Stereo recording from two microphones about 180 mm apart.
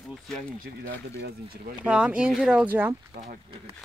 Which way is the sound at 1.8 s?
5° right (ahead or behind).